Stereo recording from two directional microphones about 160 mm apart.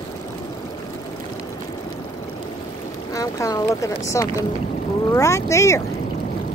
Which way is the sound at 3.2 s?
20° left (ahead or behind).